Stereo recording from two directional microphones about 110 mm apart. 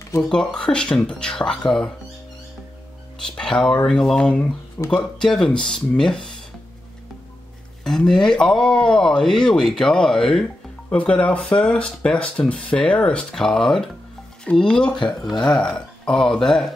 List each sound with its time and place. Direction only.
0.2 s speech: 5° left (ahead or behind)
3.2 s speech: 5° left (ahead or behind)
5.2 s speech: 5° left (ahead or behind)
7.8 s speech: 5° left (ahead or behind)